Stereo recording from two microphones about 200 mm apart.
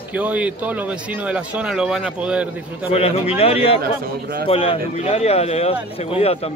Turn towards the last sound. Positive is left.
turn(degrees=30)  # may be behind; listen again after turning